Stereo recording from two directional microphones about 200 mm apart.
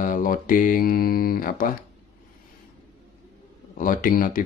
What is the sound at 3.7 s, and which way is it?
Speech, 45° left (ahead or behind).